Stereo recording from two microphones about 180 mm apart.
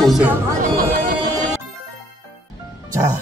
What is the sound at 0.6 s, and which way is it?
Music, 55° right (ahead or behind).